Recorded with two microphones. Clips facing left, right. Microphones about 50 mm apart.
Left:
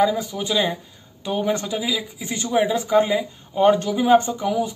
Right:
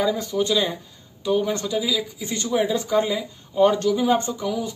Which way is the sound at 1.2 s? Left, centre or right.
Left.